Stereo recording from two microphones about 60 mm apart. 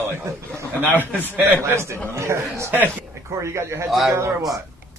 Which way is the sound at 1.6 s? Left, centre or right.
Right.